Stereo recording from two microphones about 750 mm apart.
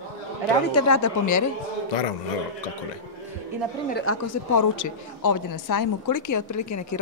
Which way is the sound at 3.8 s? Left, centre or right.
Centre.